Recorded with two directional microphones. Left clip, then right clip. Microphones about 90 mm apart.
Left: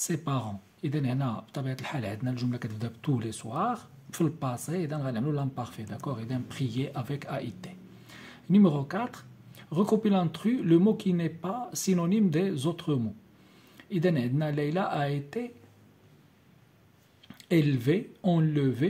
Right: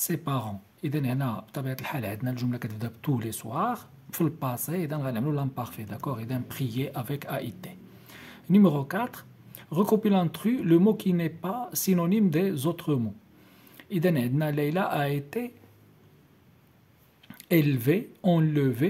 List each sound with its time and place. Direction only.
0.0 s speech: 15° right (ahead or behind); by 15.5 s 40° right (ahead or behind)
17.3 s speech: 35° right (ahead or behind)